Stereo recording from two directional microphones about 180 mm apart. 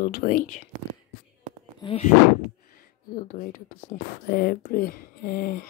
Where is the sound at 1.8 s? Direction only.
30° left (ahead or behind).